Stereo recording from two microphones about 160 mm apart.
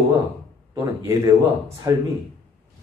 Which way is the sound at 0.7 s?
20° right (ahead or behind).